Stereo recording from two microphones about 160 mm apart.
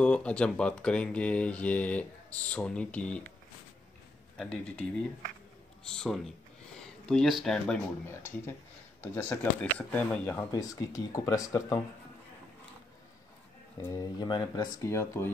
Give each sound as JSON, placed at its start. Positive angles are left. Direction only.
{"t": 0.0, "sound": "speech", "side_deg": 5}
{"t": 4.4, "sound": "speech", "side_deg": 5}
{"t": 5.9, "sound": "speech", "side_deg": 5}
{"t": 9.1, "sound": "speech", "side_deg": 15}
{"t": 13.7, "sound": "speech", "side_deg": 15}
{"t": 14.1, "sound": "speech", "side_deg": 25}